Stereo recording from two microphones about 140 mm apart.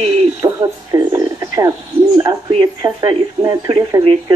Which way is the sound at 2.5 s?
40° right (ahead or behind).